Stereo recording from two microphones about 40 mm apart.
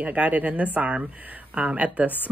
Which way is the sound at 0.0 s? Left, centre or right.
Right.